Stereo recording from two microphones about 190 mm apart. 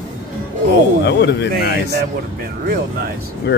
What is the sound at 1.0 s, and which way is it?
Speech, 65° left (ahead or behind).